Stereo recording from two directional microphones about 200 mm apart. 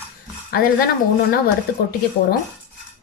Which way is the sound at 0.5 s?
50° left (ahead or behind).